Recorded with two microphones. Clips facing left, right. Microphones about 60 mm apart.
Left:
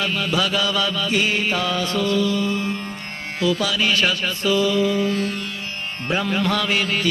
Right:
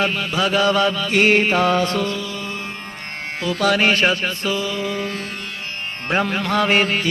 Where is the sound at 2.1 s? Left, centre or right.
Right.